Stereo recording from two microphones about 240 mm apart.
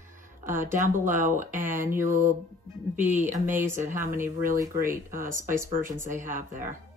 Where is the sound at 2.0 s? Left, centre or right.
Right.